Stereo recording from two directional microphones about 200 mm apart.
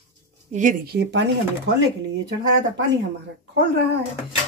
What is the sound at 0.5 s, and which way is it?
Speech, 40° right (ahead or behind).